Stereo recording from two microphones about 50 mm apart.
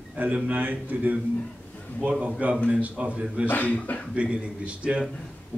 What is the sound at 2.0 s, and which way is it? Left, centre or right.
A man's voice, right.